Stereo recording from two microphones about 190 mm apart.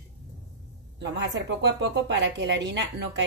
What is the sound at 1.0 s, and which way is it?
Speech, 70° right (ahead or behind).